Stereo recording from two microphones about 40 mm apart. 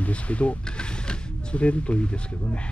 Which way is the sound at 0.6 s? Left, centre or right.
Left.